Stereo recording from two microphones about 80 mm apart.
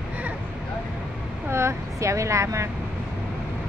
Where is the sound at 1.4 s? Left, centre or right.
Right.